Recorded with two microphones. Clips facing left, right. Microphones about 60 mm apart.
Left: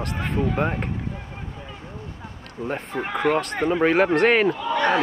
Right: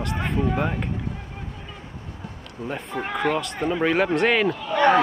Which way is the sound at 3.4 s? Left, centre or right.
Left.